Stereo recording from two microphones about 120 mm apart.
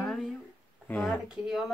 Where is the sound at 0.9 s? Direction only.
15° left (ahead or behind).